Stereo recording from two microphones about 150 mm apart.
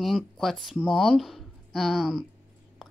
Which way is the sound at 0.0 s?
Centre (ahead or behind).